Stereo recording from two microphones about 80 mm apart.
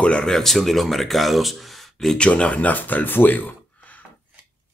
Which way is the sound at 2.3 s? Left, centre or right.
Centre.